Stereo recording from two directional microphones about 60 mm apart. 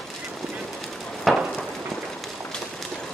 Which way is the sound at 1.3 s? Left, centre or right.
Centre.